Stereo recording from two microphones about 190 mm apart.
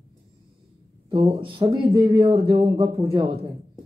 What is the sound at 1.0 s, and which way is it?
Speech, 25° right (ahead or behind).